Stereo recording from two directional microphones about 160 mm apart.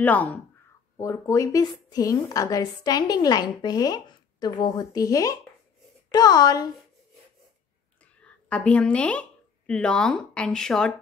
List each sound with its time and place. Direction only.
0.0 s a woman's voice: 10° left (ahead or behind)
8.2 s a woman's voice: 5° left (ahead or behind)